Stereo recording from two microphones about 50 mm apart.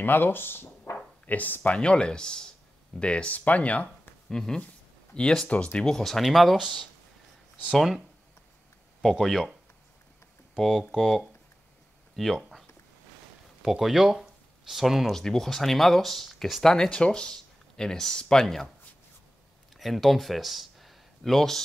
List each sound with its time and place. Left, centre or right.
0.0 s speech: left
1.2 s speech: left
1.8 s speech: centre
4.3 s speech: centre
5.5 s speech: left
5.8 s speech: centre
9.2 s speech: centre
10.6 s speech: centre
13.6 s speech: centre
15.1 s speech: centre
16.6 s speech: centre
19.7 s speech: centre